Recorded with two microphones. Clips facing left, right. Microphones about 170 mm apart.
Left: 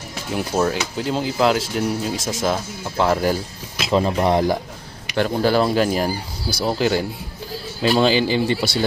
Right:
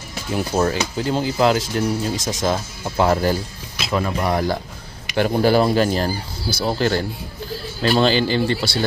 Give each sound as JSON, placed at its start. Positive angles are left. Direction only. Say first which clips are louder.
{"t": 0.3, "sound": "speech", "louder": "right 1 dB", "side_deg": 0}
{"t": 3.9, "sound": "speech", "louder": "left 3 dB", "side_deg": 25}
{"t": 5.1, "sound": "speech", "louder": "right 2 dB", "side_deg": -10}
{"t": 5.8, "sound": "speech", "louder": "even", "side_deg": 5}